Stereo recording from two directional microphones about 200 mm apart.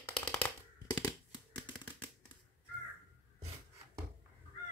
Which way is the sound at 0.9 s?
20° left (ahead or behind).